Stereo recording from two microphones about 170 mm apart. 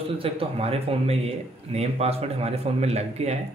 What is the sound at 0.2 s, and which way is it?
Speech, 35° right (ahead or behind).